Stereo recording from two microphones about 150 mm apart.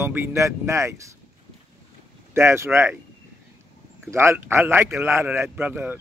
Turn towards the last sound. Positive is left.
turn(degrees=-10)  # may be behind; listen again after turning